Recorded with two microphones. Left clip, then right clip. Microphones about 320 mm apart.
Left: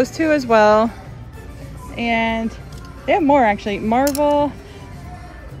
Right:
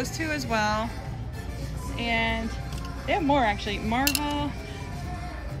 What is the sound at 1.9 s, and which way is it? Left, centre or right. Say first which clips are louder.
Speech: left 7 dB; centre.